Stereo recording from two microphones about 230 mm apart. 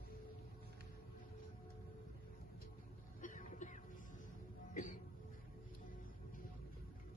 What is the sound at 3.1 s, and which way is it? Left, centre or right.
Music, left.